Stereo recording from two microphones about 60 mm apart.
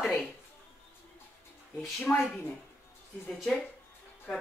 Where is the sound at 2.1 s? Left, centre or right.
Left.